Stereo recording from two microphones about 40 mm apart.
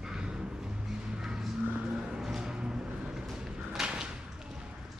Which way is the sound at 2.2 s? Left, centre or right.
Centre.